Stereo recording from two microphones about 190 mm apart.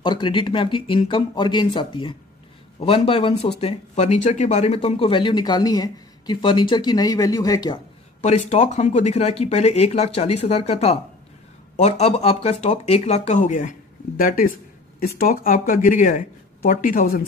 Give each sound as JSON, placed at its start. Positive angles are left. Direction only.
{"t": 0.0, "sound": "speech", "side_deg": 25}
{"t": 8.2, "sound": "speech", "side_deg": 35}